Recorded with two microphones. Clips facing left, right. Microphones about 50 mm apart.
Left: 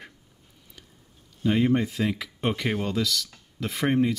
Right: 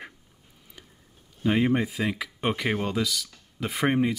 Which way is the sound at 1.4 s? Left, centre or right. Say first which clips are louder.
Left 1 dB; centre.